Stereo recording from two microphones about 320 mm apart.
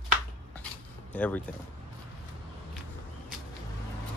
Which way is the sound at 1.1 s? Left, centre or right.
Centre.